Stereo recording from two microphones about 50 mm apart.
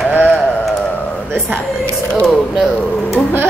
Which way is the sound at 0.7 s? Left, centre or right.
Centre.